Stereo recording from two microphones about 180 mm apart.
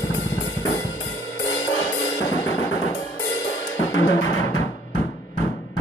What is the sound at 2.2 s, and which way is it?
Drum, 90° left.